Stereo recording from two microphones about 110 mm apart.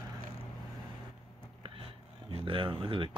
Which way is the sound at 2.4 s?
50° right (ahead or behind).